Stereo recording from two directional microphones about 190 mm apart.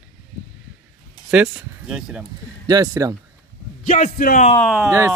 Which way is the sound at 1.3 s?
5° right (ahead or behind).